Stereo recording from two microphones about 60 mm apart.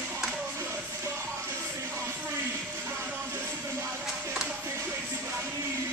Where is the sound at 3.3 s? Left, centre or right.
Right.